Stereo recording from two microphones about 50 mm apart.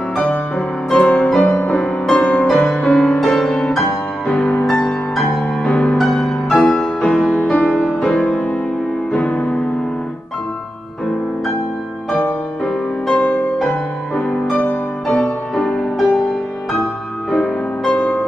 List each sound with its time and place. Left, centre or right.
0.2 s music: left; by 5.4 s centre
5.4 s music: centre
5.9 s music: centre
8.0 s music: centre
12.6 s music: centre
13.6 s music: centre
15.2 s music: centre